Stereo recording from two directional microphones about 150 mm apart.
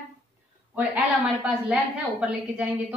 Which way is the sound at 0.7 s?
10° right (ahead or behind).